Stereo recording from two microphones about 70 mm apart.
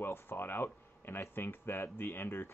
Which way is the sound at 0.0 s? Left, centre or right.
Left.